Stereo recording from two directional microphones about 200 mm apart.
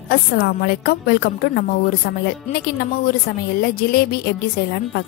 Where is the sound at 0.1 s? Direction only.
50° left (ahead or behind).